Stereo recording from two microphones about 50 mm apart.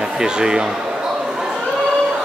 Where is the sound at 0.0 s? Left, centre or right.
Centre.